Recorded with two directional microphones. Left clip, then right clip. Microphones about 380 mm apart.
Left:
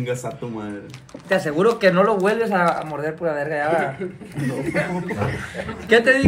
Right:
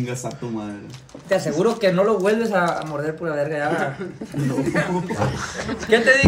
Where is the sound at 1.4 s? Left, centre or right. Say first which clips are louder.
Left 4 dB; centre.